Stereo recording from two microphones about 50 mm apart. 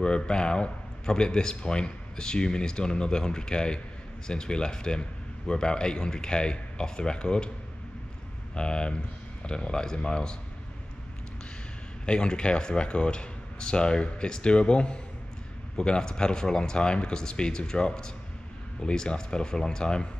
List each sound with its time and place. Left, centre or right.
0.0 s speech: centre
8.5 s speech: centre
12.1 s speech: centre